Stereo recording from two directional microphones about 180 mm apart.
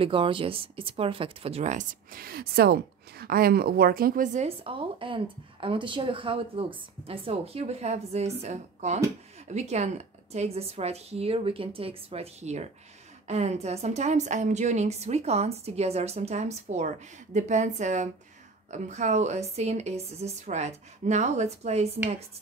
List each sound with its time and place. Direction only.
0.0 s speech: 30° right (ahead or behind)